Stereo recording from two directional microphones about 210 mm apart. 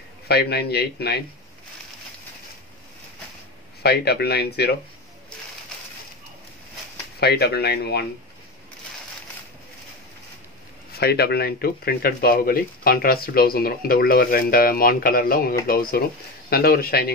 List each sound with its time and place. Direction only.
0.3 s speech: 50° left (ahead or behind)
3.8 s speech: 50° left (ahead or behind)
7.2 s speech: 50° left (ahead or behind)
10.9 s speech: 50° left (ahead or behind)